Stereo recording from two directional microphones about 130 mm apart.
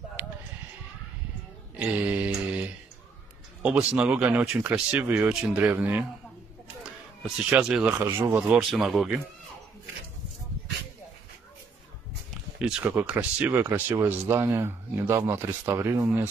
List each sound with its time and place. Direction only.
1.8 s mantra: 10° right (ahead or behind)
3.6 s speech: 10° right (ahead or behind)
6.8 s a sound: 10° right (ahead or behind)
7.9 s speech: 20° right (ahead or behind)
8.5 s speech: centre (ahead or behind)
12.5 s speech: 5° right (ahead or behind)